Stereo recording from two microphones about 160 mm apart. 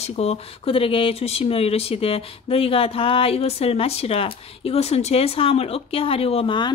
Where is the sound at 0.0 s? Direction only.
40° left (ahead or behind).